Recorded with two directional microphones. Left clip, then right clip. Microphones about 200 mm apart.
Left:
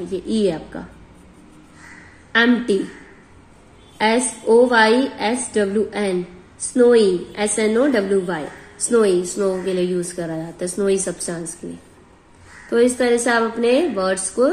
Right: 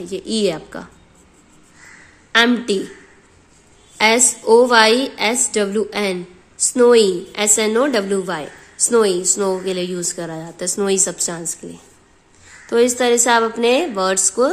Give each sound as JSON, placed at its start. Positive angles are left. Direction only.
{"t": 0.1, "sound": "a woman's voice", "side_deg": -45}
{"t": 2.3, "sound": "a woman's voice", "side_deg": -45}
{"t": 4.0, "sound": "a woman's voice", "side_deg": -50}
{"t": 12.6, "sound": "a woman's voice", "side_deg": -40}